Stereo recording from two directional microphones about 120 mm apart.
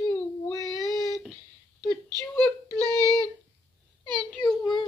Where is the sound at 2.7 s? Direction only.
30° right (ahead or behind).